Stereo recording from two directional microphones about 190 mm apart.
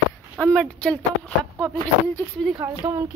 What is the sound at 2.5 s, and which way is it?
Speech, 20° right (ahead or behind).